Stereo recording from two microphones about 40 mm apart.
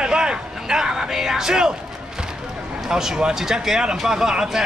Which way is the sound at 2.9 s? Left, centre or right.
Centre.